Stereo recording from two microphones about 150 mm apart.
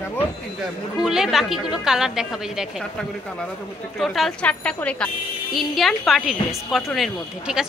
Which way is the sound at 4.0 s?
Centre (ahead or behind).